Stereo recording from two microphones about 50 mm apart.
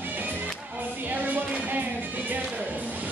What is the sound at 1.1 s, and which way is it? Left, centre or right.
Music, right.